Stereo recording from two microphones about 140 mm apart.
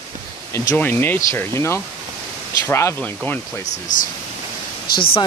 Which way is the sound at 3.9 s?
65° left (ahead or behind).